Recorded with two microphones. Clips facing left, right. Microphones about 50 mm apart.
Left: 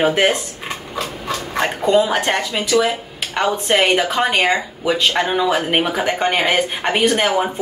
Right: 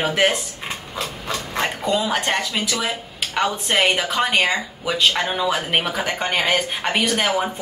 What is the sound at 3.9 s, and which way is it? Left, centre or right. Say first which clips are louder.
Speech: left 3 dB; left.